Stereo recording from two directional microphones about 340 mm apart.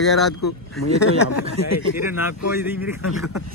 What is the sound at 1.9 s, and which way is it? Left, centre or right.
Speech, centre.